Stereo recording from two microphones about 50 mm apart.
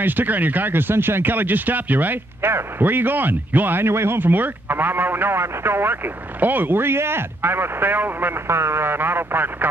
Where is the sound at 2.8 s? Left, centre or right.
Right.